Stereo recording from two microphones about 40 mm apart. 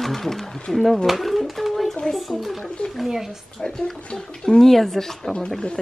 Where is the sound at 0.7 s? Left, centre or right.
Centre.